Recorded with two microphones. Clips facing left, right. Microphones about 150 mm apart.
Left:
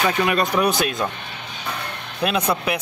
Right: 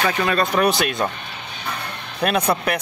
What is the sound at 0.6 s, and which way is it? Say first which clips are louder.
Speech: right 1 dB; centre (ahead or behind).